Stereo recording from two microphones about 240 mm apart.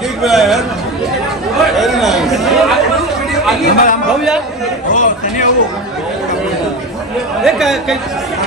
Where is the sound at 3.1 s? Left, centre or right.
Centre.